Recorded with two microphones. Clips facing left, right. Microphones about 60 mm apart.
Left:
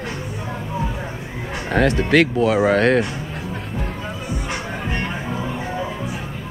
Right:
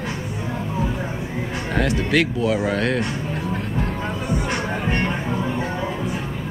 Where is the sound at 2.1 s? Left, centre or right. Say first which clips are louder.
Left 4 dB; left.